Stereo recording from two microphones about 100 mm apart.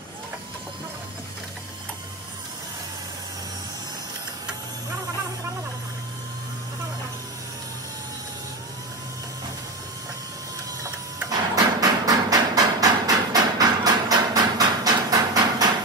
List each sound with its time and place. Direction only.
11.2 s hammer: 40° right (ahead or behind)